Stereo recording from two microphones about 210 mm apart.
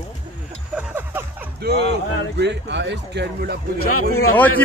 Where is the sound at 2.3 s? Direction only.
55° right (ahead or behind).